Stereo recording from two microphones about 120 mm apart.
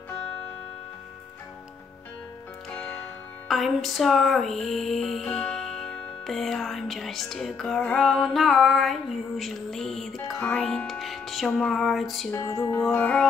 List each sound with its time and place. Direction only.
3.4 s music: centre (ahead or behind)
12.3 s music: 25° left (ahead or behind)
12.9 s music: 10° left (ahead or behind)